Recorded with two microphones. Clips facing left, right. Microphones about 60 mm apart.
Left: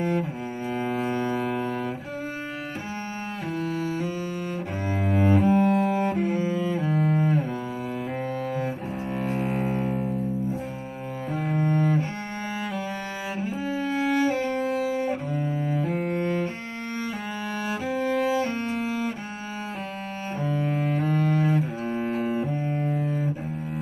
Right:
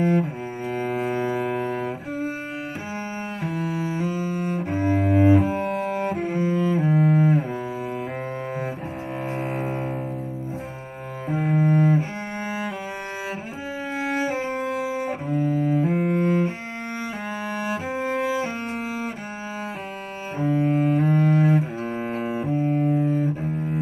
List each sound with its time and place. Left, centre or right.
0.0 s cello: centre
0.7 s double bass: centre
3.5 s cello: centre
4.8 s double bass: centre
6.4 s cello: centre
6.8 s double bass: centre
9.3 s music: centre
11.2 s cello: centre
13.9 s bowed string instrument: centre
15.2 s double bass: centre
15.6 s music: centre
17.6 s cello: right
20.3 s cello: centre
21.5 s double bass: centre